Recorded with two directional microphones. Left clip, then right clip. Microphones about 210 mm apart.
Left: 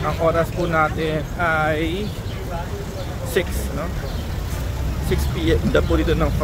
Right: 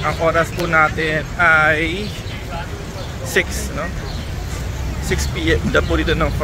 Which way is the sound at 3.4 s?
5° left (ahead or behind).